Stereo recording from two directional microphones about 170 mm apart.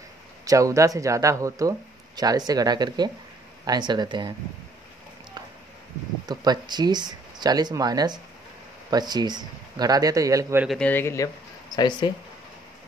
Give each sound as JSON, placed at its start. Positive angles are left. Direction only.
{"t": 0.5, "sound": "speech", "side_deg": -20}
{"t": 6.2, "sound": "speech", "side_deg": -25}
{"t": 10.8, "sound": "speech", "side_deg": 10}
{"t": 11.7, "sound": "speech", "side_deg": 25}